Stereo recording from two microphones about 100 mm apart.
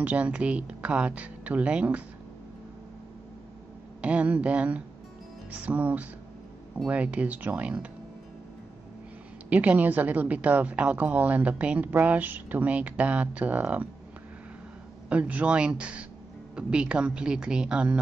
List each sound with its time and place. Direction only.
0.0 s a woman's voice: 15° right (ahead or behind)
4.0 s a woman's voice: 10° right (ahead or behind)
9.5 s a woman's voice: 15° right (ahead or behind)
15.0 s a woman's voice: 15° right (ahead or behind)